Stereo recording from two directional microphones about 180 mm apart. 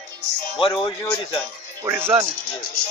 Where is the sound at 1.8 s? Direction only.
15° right (ahead or behind).